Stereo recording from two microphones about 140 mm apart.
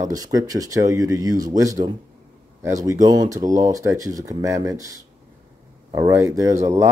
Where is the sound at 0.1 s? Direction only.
25° right (ahead or behind).